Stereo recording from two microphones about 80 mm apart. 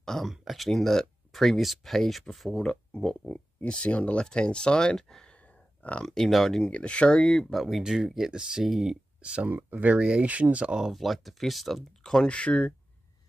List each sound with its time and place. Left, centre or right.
0.0 s speech: centre
5.8 s a sound: centre
6.0 s speech: centre
6.7 s speech: centre
9.2 s speech: centre